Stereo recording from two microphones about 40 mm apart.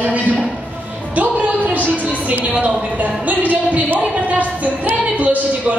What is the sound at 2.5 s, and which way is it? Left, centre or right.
A woman's voice, right.